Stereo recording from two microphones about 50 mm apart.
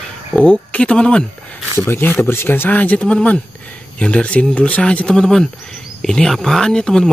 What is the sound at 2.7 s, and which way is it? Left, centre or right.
Speech, left.